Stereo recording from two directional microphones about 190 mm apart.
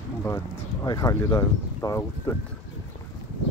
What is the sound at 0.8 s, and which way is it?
Speech, 20° left (ahead or behind).